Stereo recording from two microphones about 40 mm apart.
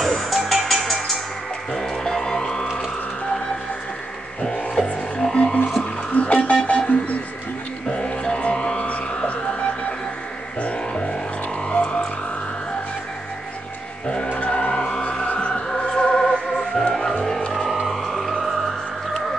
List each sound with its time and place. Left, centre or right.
0.1 s music: centre
4.4 s music: centre
5.8 s music: left
7.9 s music: left
14.0 s chant: centre
14.5 s music: left
17.8 s music: centre